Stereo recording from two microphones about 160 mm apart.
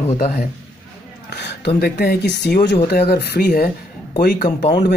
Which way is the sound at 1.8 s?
85° left.